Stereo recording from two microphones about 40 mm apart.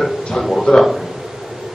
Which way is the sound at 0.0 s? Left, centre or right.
Centre.